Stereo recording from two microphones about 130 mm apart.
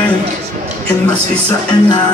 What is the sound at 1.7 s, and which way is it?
Music, 30° left (ahead or behind).